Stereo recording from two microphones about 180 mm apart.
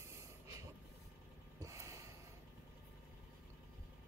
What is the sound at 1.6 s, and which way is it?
Gasp, 15° right (ahead or behind).